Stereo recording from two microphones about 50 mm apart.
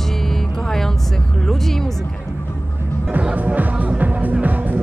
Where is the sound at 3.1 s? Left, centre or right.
Right.